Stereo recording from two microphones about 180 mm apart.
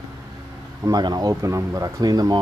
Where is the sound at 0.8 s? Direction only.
20° right (ahead or behind).